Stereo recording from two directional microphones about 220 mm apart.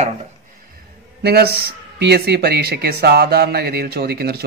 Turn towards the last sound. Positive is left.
turn(degrees=-45)  # may be behind; listen again after turning